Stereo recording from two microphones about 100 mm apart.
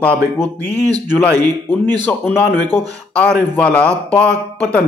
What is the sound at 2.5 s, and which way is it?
Speech, 45° right (ahead or behind).